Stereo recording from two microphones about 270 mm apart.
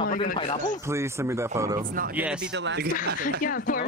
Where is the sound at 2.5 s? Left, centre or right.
Right.